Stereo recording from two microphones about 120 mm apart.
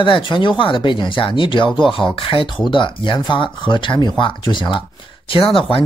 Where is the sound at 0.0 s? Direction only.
45° left (ahead or behind).